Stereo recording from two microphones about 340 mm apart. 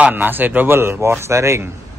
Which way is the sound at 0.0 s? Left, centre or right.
Centre.